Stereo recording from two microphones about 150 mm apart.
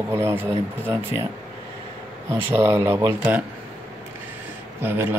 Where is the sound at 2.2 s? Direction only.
15° right (ahead or behind).